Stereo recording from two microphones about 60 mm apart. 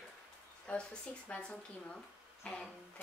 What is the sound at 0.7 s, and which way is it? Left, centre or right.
Speech, centre.